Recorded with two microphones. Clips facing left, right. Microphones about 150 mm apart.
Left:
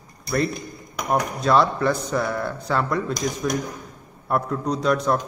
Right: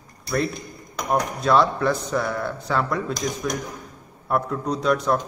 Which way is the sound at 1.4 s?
Centre (ahead or behind).